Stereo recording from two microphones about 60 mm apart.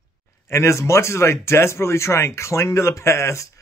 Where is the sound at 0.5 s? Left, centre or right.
Left.